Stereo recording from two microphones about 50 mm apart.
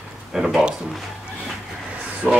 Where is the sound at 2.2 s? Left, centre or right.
Centre.